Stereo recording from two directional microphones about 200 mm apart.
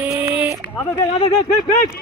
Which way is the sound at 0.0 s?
10° right (ahead or behind).